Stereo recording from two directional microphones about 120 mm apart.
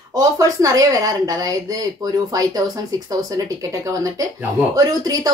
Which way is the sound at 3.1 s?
30° right (ahead or behind).